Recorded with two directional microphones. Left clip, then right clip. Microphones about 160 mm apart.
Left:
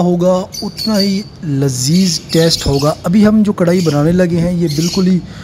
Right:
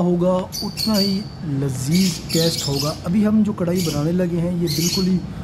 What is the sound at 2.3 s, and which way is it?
Speech, 45° left (ahead or behind).